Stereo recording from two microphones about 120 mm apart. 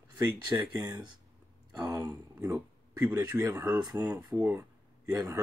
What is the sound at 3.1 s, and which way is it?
Speech, 20° right (ahead or behind).